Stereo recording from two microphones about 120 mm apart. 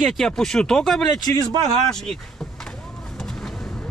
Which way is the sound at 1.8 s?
5° left (ahead or behind).